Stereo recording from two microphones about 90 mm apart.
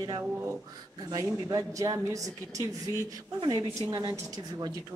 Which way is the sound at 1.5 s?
40° right (ahead or behind).